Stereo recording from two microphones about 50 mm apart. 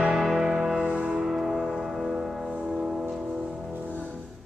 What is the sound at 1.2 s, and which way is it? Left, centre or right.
Music, centre.